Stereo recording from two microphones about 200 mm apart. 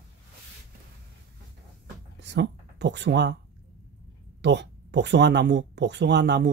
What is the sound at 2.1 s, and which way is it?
Speech, 60° right (ahead or behind).